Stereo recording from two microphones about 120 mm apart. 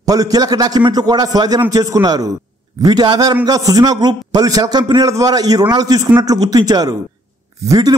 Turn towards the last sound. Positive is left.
turn(degrees=-35)  # may be behind; listen again after turning